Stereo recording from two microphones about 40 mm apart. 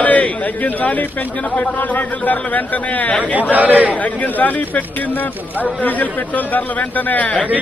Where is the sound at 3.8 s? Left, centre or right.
Left.